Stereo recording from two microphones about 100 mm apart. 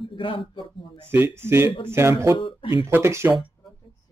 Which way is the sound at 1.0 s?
25° right (ahead or behind).